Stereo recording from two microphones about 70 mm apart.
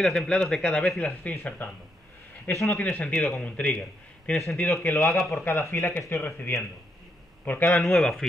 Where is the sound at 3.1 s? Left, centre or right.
Centre.